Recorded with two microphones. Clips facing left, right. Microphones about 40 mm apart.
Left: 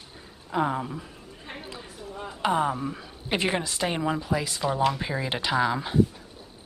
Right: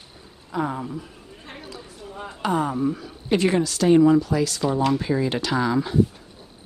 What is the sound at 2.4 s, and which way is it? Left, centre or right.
A woman's voice, centre.